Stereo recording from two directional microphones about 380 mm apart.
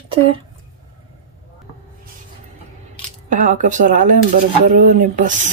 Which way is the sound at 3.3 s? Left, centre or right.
Centre.